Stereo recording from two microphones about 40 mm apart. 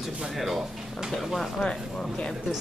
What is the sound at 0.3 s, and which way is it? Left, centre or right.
Speech, centre.